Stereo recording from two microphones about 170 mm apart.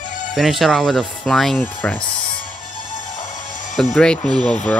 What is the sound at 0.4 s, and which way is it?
Speech, centre (ahead or behind).